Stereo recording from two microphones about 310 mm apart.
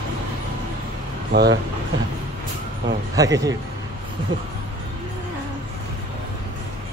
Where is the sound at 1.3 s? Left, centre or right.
Right.